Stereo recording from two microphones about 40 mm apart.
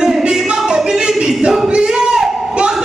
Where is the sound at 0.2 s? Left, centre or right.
Right.